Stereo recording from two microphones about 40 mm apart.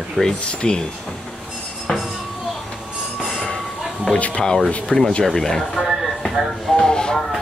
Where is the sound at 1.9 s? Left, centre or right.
Centre.